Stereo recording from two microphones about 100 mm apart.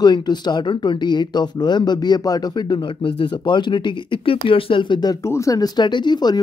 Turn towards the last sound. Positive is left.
turn(degrees=45)  # may be behind; listen again after turning